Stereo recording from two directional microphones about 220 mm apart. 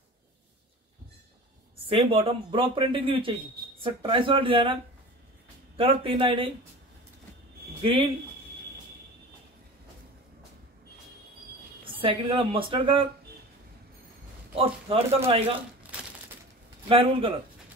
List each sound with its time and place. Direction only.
1.9 s speech: 25° right (ahead or behind)
5.8 s speech: 25° right (ahead or behind)
7.8 s speech: 25° right (ahead or behind)
11.8 s speech: 25° right (ahead or behind)
14.5 s speech: 25° right (ahead or behind)
16.9 s speech: 25° right (ahead or behind)